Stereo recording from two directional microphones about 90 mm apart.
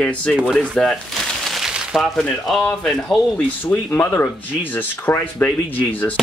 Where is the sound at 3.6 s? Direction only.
20° left (ahead or behind).